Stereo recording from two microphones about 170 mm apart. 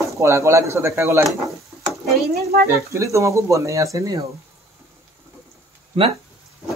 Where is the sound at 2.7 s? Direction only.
15° right (ahead or behind).